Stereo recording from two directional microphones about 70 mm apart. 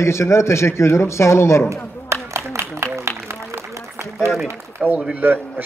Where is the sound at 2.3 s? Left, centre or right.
Right.